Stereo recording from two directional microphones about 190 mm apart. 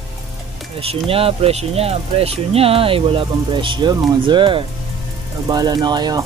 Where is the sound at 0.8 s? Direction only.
30° right (ahead or behind).